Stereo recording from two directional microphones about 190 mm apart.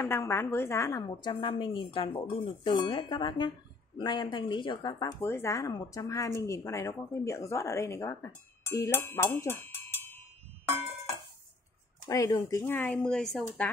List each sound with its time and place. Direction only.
0.0 s speech: 10° left (ahead or behind)
1.0 s a woman's voice: 25° left (ahead or behind)
12.1 s speech: 15° left (ahead or behind)